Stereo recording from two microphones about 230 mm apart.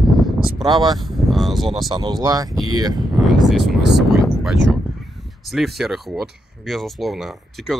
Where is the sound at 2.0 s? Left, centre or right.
Centre.